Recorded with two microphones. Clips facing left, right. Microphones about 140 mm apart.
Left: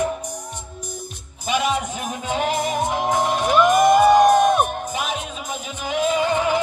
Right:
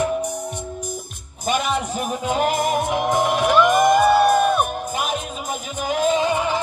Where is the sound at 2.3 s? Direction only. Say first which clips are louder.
Right 2 dB; 45° right (ahead or behind).